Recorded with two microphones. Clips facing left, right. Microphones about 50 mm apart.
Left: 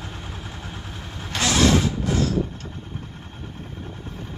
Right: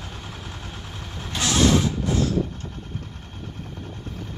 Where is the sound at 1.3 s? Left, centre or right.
Left.